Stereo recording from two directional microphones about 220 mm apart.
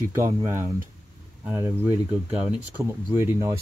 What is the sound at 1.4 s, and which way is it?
Speech, 10° right (ahead or behind).